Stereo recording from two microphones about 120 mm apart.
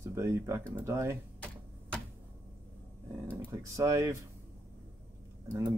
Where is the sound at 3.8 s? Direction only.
25° right (ahead or behind).